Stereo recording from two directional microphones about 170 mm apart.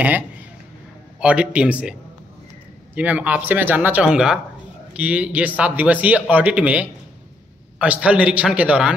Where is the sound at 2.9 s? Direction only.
10° right (ahead or behind).